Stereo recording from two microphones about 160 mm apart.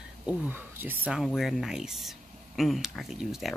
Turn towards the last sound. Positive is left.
turn(degrees=0)  # may be behind; listen again after turning